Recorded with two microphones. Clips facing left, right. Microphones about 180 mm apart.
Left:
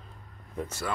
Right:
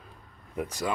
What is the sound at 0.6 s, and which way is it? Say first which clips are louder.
Speech: right 3 dB; 15° right (ahead or behind).